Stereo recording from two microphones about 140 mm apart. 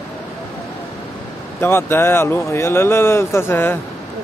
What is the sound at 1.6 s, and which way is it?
Speech, 15° left (ahead or behind).